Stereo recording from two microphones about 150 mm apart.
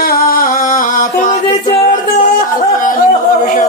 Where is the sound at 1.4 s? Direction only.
35° left (ahead or behind).